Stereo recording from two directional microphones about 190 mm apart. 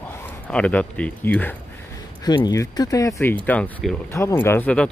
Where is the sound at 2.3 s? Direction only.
20° left (ahead or behind).